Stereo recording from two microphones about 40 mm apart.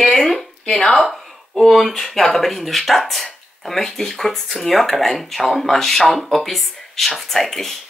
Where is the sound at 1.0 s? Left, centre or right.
Centre.